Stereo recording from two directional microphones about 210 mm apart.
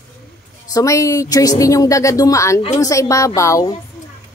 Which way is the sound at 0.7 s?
15° left (ahead or behind).